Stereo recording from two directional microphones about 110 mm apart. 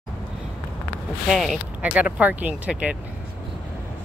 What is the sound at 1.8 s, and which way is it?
Speech, 10° right (ahead or behind).